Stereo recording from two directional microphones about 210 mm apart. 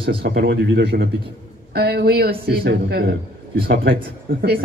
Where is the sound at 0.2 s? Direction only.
50° right (ahead or behind).